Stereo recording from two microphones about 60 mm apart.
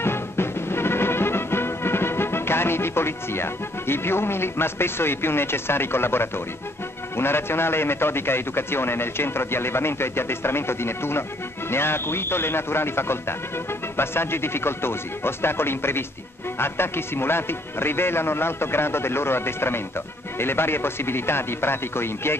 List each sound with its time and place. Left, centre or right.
0.0 s music: left
7.2 s a man's voice: left